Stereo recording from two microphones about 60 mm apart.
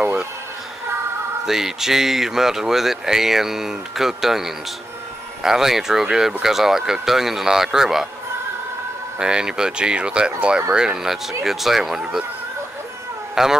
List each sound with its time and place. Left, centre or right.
0.0 s a sound: right
1.4 s speech: centre
9.2 s speech: centre
13.3 s speech: centre